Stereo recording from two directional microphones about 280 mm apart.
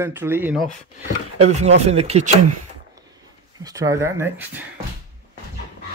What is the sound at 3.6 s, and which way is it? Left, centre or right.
Speech, centre.